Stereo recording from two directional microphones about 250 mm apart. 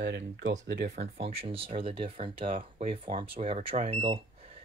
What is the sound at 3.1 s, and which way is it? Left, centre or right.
Speech, right.